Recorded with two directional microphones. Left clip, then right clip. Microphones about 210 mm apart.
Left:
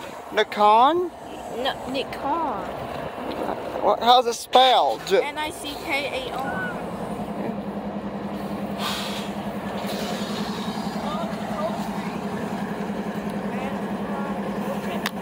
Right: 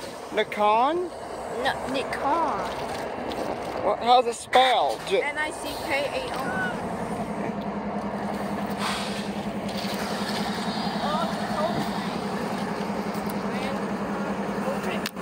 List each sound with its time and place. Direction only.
0.4 s speech: 20° left (ahead or behind)
3.8 s speech: 20° left (ahead or behind)